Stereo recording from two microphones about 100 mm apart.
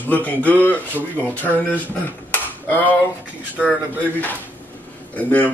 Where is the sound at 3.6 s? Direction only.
15° left (ahead or behind).